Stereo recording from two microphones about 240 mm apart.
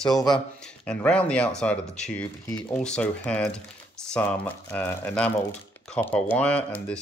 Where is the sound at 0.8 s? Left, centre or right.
Centre.